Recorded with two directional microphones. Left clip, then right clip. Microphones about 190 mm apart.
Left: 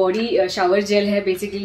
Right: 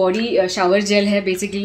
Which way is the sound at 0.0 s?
25° right (ahead or behind).